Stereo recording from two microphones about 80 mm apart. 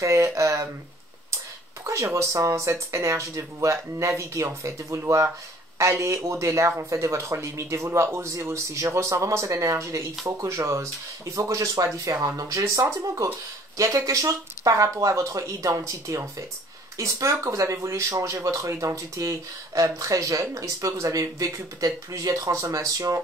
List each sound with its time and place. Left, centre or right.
0.0 s speech: right
1.9 s speech: right